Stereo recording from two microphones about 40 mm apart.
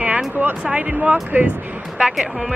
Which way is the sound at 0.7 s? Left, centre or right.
Right.